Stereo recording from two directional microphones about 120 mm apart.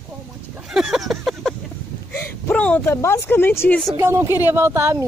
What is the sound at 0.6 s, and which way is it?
Speech, 5° right (ahead or behind).